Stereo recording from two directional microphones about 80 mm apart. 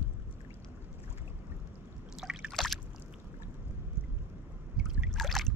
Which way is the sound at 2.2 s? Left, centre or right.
Centre.